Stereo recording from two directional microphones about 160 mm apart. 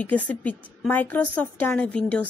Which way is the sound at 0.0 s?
10° left (ahead or behind).